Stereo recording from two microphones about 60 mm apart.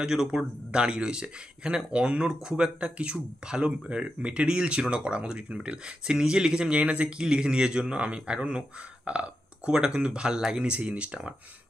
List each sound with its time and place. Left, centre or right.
0.0 s speech: centre